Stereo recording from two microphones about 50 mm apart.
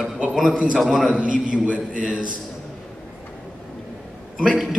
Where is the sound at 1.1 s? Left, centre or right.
Right.